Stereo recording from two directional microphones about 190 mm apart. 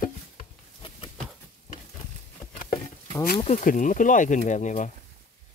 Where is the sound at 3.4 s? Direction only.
40° left (ahead or behind).